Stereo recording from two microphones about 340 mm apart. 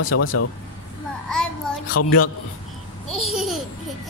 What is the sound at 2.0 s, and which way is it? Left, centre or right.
Speech, left.